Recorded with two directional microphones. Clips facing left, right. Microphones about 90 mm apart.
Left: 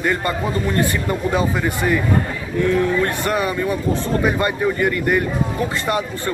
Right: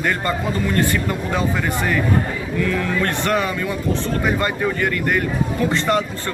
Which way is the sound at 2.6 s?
30° left (ahead or behind).